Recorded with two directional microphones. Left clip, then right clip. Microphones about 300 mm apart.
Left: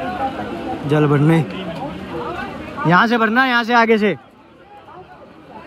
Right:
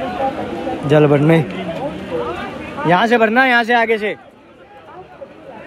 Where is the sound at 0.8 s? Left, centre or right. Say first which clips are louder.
Right 5 dB; centre.